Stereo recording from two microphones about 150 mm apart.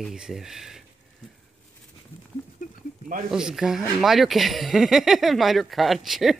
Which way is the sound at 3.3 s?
5° right (ahead or behind).